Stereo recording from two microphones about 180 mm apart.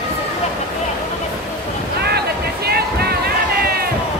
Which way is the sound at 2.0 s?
60° right (ahead or behind).